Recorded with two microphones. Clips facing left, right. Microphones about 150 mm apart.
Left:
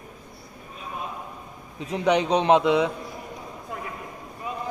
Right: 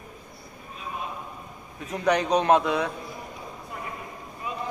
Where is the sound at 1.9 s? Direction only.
15° left (ahead or behind).